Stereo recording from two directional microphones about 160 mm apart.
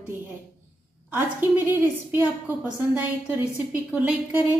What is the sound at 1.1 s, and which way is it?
A woman's voice, 10° right (ahead or behind).